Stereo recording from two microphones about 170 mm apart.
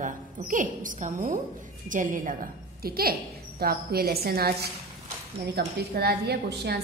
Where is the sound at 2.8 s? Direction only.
60° right (ahead or behind).